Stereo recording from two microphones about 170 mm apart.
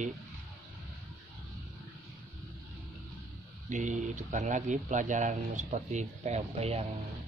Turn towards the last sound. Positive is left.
turn(degrees=-40)  # may be behind; listen again after turning